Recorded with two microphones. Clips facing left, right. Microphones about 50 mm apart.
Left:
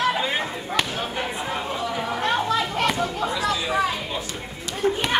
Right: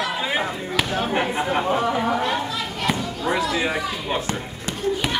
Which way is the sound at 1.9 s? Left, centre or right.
Right.